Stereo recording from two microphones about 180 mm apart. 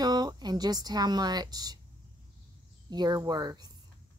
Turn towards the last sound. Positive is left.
turn(degrees=-20)  # may be behind; listen again after turning